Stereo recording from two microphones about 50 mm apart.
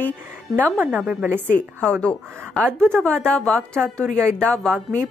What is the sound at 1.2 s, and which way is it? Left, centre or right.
Speech, right.